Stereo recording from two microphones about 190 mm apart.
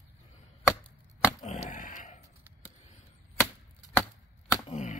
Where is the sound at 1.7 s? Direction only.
40° left (ahead or behind).